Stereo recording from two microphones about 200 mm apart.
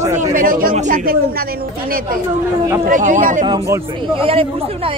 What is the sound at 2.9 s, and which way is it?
Speech, 40° right (ahead or behind).